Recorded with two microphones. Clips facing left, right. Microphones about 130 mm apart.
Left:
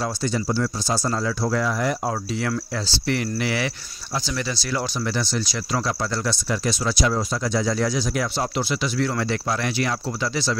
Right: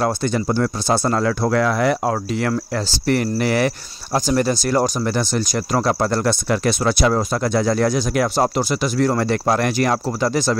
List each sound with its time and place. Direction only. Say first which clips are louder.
0.0 s speech: right 5 dB; 60° right (ahead or behind)
2.7 s speech: right 6 dB; 50° right (ahead or behind)